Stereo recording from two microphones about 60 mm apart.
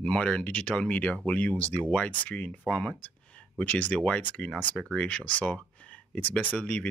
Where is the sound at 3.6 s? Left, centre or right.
Left.